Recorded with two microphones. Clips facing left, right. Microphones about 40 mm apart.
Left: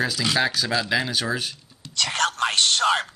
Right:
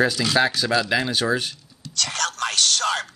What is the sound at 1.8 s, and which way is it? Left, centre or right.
Whispering, left.